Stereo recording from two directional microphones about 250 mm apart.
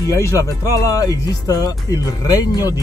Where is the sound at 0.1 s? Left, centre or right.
Centre.